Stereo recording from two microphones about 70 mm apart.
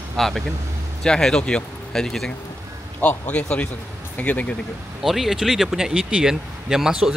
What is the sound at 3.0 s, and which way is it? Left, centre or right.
Speech, left.